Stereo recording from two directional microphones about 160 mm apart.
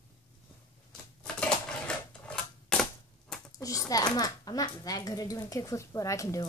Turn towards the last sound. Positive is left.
turn(degrees=20)  # may be behind; listen again after turning